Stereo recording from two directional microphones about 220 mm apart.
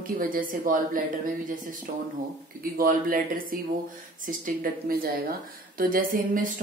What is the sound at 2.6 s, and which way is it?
A woman's voice, 40° right (ahead or behind).